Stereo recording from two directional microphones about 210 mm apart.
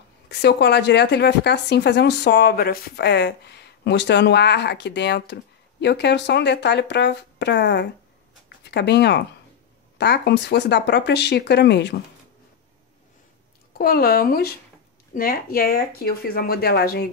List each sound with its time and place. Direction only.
0.3 s speech: 55° left (ahead or behind)
13.7 s speech: 45° left (ahead or behind)